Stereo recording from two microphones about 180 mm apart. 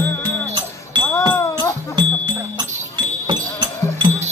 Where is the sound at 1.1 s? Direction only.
15° left (ahead or behind).